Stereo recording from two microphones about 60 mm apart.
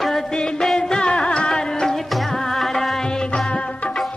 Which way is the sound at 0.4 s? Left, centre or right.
Centre.